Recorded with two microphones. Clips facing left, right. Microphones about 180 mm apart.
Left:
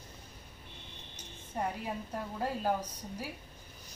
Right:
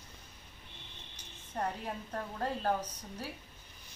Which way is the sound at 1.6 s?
10° left (ahead or behind).